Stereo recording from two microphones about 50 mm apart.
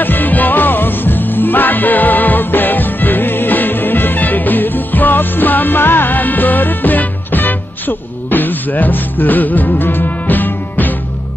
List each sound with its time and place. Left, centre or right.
0.0 s music: left